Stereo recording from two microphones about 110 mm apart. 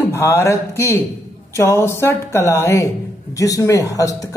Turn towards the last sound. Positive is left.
turn(degrees=30)  # may be behind; listen again after turning